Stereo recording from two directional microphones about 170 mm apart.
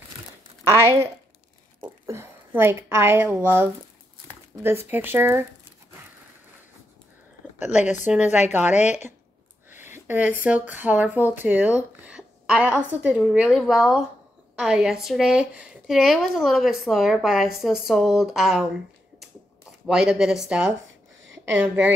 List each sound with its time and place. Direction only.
1.8 s a woman's voice: 15° right (ahead or behind)
7.7 s a woman's voice: 45° left (ahead or behind)
8.1 s a woman's voice: 10° right (ahead or behind)
8.7 s a woman's voice: 45° left (ahead or behind)
9.7 s a woman's voice: 15° right (ahead or behind)
19.9 s a woman's voice: 5° right (ahead or behind)